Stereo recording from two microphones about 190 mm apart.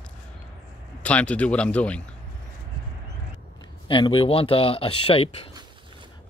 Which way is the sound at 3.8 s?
25° left (ahead or behind).